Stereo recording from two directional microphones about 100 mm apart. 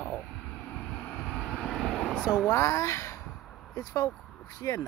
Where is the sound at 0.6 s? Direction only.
10° left (ahead or behind).